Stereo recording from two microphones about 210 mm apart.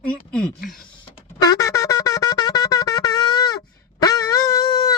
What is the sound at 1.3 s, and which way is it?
Wind instrument, 15° left (ahead or behind).